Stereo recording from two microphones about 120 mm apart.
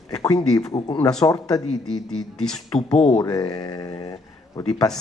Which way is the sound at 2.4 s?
5° left (ahead or behind).